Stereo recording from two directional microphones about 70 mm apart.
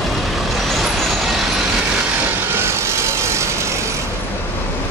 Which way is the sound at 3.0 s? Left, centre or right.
Right.